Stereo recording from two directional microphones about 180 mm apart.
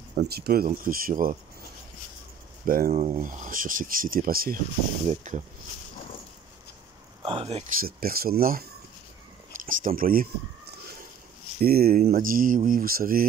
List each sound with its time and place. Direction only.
0.1 s speech: 60° right (ahead or behind)
2.6 s speech: 50° right (ahead or behind)
2.9 s speech: 40° right (ahead or behind)
5.0 s speech: 40° right (ahead or behind)
7.2 s speech: 35° right (ahead or behind)
7.8 s speech: 55° right (ahead or behind)
11.6 s speech: 60° right (ahead or behind)